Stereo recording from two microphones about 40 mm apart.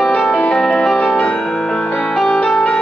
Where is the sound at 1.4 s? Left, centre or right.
Centre.